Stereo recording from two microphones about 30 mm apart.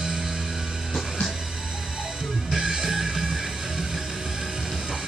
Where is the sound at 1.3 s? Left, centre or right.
Centre.